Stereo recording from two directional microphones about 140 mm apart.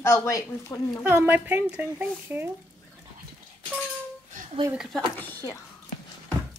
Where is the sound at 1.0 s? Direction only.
15° right (ahead or behind).